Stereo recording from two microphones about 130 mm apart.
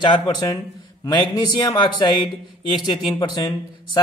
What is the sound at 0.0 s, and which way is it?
Speech, 30° left (ahead or behind).